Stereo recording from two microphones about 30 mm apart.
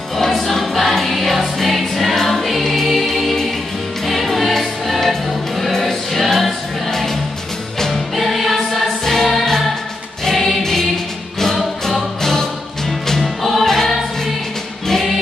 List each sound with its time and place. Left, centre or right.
0.2 s music: centre
5.6 s music: centre
6.2 s music: centre
8.2 s music: centre
9.0 s music: centre
12.2 s music: centre
13.2 s music: centre
13.7 s choir: centre